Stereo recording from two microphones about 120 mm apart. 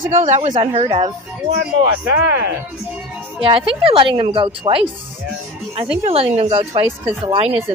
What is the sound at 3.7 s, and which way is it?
A woman's voice, 50° right (ahead or behind).